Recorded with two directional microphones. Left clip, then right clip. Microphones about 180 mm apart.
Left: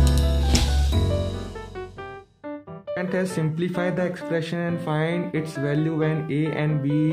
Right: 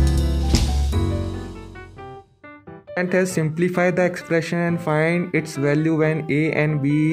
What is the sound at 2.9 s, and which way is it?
Speech, 30° right (ahead or behind).